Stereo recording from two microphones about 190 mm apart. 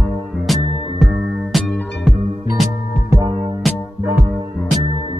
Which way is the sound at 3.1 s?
20° right (ahead or behind).